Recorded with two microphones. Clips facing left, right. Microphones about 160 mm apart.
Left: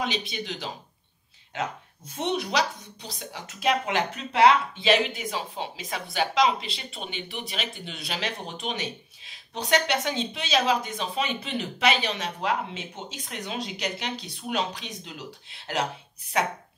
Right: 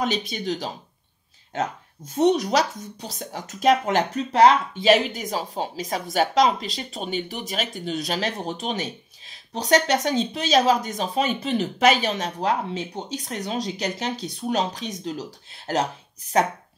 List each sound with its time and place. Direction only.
0.0 s speech: 45° right (ahead or behind)